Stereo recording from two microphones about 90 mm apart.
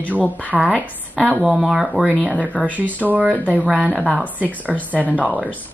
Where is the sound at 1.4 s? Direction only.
Centre (ahead or behind).